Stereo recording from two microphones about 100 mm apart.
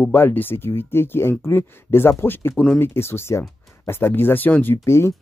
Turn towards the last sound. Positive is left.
turn(degrees=25)  # may be behind; listen again after turning